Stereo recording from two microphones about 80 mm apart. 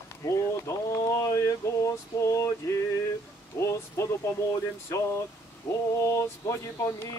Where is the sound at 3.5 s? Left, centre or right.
Left.